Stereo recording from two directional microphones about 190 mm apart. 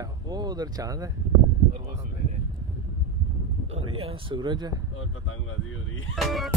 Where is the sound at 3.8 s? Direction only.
30° right (ahead or behind).